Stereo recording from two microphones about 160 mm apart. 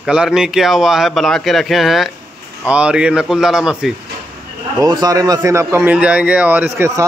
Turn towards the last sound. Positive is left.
turn(degrees=-10)  # may be behind; listen again after turning